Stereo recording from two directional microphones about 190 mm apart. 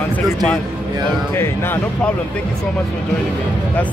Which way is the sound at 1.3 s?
10° left (ahead or behind).